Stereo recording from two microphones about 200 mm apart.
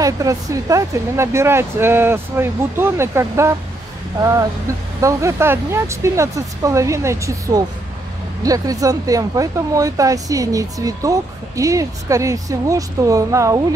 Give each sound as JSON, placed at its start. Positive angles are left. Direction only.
{"t": 0.0, "sound": "speech", "side_deg": -15}